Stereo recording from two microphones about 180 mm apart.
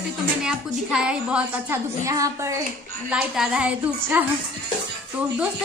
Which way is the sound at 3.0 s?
5° right (ahead or behind).